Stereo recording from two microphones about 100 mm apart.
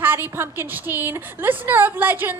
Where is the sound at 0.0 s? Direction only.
20° right (ahead or behind).